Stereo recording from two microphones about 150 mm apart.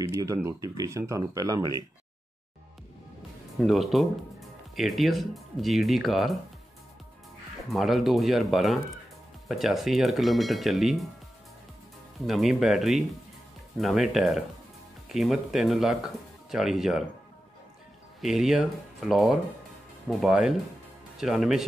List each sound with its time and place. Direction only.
0.2 s speech: 20° right (ahead or behind)
3.5 s speech: centre (ahead or behind)
7.7 s speech: centre (ahead or behind)
12.3 s speech: centre (ahead or behind)
18.2 s speech: 5° right (ahead or behind)